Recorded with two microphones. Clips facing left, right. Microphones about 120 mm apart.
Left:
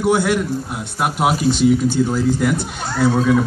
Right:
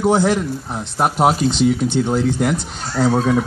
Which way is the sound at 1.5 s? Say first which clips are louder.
Left 2 dB; 50° left (ahead or behind).